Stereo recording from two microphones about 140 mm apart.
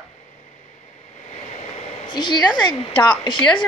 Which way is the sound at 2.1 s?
30° left (ahead or behind).